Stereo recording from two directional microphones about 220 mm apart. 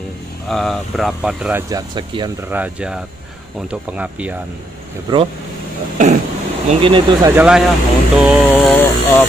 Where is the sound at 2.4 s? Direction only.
10° right (ahead or behind).